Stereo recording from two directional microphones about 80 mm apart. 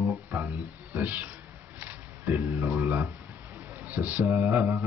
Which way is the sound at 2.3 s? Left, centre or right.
Right.